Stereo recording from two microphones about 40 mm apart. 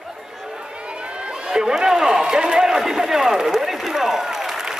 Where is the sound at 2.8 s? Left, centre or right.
Centre.